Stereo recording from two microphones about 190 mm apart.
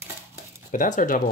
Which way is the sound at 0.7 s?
45° left (ahead or behind).